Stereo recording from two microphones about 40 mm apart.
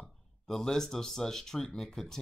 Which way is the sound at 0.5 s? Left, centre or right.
Centre.